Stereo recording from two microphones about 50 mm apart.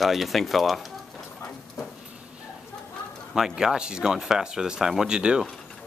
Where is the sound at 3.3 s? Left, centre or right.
Centre.